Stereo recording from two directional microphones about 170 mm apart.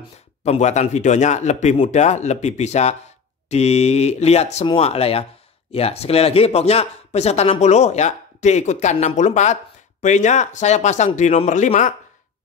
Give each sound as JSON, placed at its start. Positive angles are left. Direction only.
{"t": 0.4, "sound": "a man's voice", "side_deg": 40}